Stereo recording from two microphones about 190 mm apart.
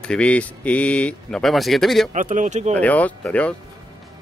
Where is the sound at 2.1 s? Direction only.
45° right (ahead or behind).